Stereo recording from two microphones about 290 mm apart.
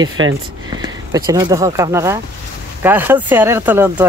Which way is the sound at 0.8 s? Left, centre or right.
Centre.